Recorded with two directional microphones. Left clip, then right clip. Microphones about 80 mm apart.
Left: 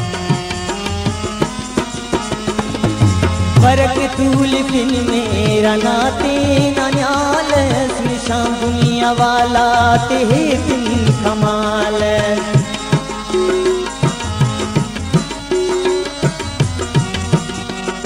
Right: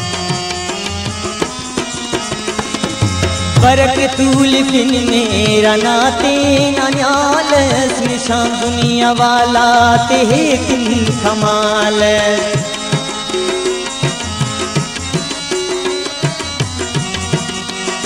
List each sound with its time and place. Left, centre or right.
1.4 s music: right